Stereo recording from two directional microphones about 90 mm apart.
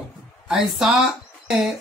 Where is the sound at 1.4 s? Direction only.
Centre (ahead or behind).